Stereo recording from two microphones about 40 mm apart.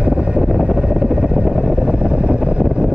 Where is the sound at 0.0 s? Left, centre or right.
Right.